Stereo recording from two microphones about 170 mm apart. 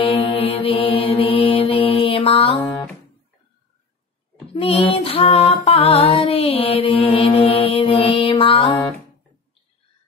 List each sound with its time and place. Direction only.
0.0 s music: 35° left (ahead or behind)
4.6 s female singing: 30° left (ahead or behind)